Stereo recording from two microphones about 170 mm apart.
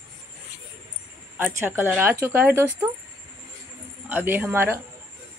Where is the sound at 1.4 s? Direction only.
15° right (ahead or behind).